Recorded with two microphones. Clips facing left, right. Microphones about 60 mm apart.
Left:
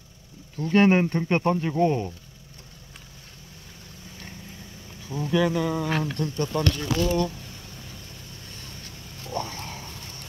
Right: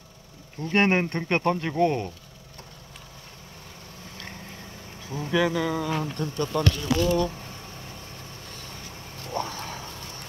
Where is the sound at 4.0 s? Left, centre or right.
Right.